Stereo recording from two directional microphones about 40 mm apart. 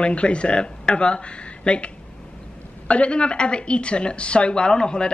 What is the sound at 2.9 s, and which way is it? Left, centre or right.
Speech, left.